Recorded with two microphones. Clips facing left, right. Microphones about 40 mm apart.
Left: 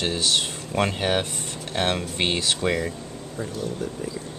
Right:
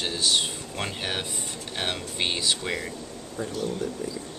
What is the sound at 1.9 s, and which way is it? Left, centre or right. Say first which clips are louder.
Speech: left 4 dB; left.